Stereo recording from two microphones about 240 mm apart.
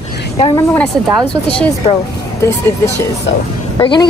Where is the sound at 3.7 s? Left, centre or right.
Centre.